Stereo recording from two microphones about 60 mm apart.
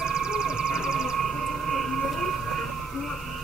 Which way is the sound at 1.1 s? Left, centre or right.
Centre.